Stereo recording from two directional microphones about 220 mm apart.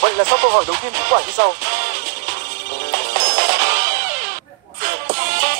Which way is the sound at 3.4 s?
45° right (ahead or behind).